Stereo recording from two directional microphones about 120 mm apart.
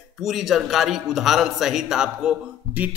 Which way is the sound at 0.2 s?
Centre (ahead or behind).